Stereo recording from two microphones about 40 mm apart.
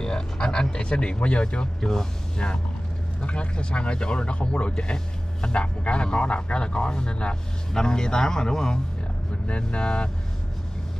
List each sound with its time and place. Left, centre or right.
0.0 s a sound: centre
0.7 s speech: left
1.8 s speech: centre
3.3 s speech: left
9.5 s speech: left